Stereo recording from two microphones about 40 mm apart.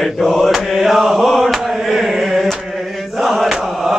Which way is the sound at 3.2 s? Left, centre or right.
Centre.